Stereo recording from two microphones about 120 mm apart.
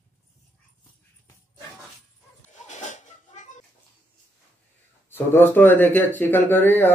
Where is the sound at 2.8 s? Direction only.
85° left.